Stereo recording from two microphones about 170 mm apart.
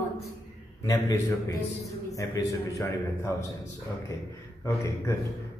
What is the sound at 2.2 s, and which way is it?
A man's voice, 20° left (ahead or behind).